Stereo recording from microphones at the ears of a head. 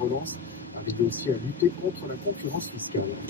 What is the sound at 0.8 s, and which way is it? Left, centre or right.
Speech, left.